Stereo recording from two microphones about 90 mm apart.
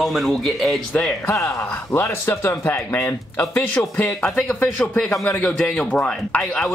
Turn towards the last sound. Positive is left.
turn(degrees=5)  # may be behind; listen again after turning